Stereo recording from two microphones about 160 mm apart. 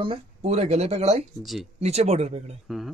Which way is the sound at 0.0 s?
35° right (ahead or behind).